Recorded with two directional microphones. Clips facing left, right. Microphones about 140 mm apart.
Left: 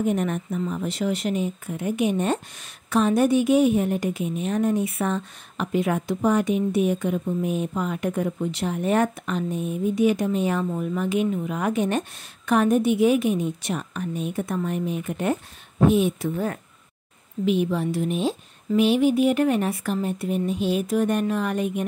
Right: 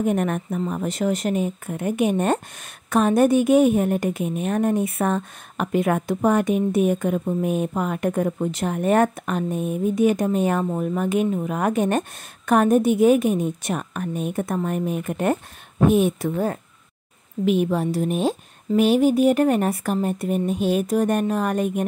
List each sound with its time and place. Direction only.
0.0 s a woman's voice: 50° right (ahead or behind)
17.5 s a woman's voice: 50° right (ahead or behind)